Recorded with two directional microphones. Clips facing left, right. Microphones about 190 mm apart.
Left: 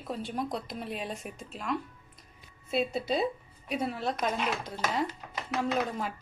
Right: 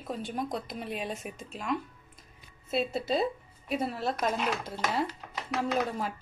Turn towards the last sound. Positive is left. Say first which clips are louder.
# even
turn(degrees=-5)  # may be behind; listen again after turning